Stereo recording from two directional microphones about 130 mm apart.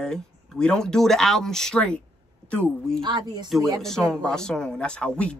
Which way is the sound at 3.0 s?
35° right (ahead or behind).